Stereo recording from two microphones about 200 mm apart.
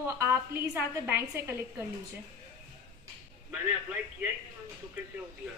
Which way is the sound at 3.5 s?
10° right (ahead or behind).